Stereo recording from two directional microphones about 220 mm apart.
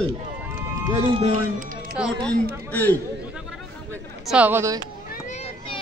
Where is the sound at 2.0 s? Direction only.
5° right (ahead or behind).